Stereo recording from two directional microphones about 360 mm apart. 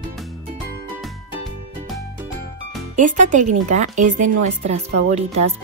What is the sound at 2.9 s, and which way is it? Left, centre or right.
Speech, right.